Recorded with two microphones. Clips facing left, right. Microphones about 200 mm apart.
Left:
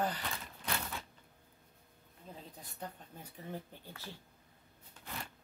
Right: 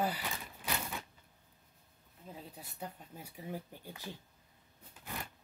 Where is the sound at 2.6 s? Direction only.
10° right (ahead or behind).